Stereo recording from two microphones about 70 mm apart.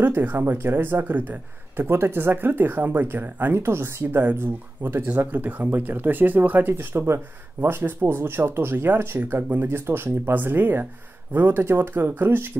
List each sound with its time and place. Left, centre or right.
0.0 s speech: right